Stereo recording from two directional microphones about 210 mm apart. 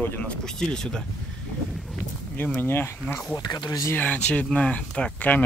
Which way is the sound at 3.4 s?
20° left (ahead or behind).